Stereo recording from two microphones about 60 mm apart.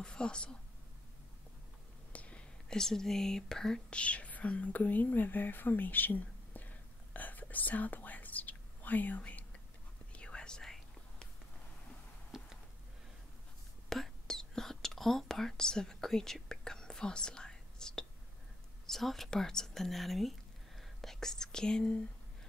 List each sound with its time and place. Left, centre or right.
0.0 s speech: centre
2.1 s whispering: centre
2.8 s speech: centre
3.9 s speech: left
7.2 s whispering: left; by 11.2 s centre
12.3 s a sound: centre
13.8 s whispering: centre
18.9 s speech: centre